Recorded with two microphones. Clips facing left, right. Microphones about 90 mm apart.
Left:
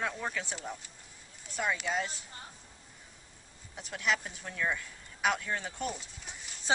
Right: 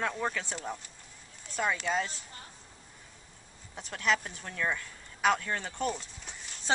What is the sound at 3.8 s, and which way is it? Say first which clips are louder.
Speech: right 2 dB; 5° left (ahead or behind).